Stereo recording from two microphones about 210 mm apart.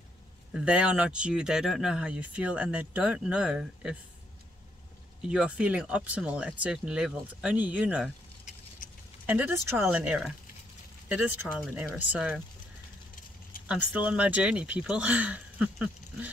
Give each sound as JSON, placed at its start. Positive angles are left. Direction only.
{"t": 0.5, "sound": "speech", "side_deg": -5}
{"t": 5.3, "sound": "speech", "side_deg": -5}
{"t": 8.5, "sound": "vehicle", "side_deg": 40}
{"t": 9.2, "sound": "speech", "side_deg": -10}
{"t": 13.7, "sound": "speech", "side_deg": -5}